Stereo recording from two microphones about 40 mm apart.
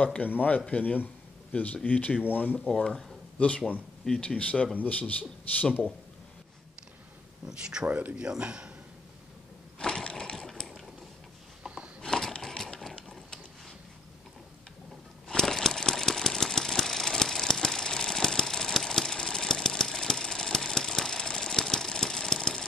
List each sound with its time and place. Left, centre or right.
0.0 s speech: left
2.7 s speech: centre
3.3 s speech: left
4.1 s speech: left
7.4 s a man's voice: centre
7.8 s speech: right
8.2 s a man's voice: right
9.8 s crushing: centre
10.5 s mechanisms: centre
11.6 s a sound: right
12.0 s a sound: centre
15.2 s engine: centre